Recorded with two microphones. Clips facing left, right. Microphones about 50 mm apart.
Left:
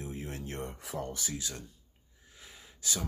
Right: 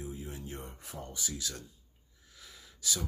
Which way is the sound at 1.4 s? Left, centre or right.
Left.